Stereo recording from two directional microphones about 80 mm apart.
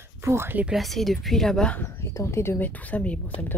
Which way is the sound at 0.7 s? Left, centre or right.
Centre.